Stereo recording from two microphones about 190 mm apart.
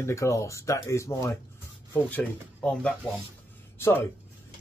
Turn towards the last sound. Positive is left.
turn(degrees=15)  # may be behind; listen again after turning